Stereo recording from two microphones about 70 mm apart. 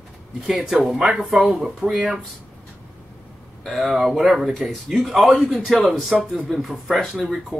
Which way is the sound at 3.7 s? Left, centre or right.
Centre.